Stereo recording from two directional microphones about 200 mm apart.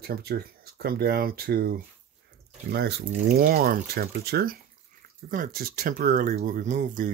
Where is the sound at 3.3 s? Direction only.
45° right (ahead or behind).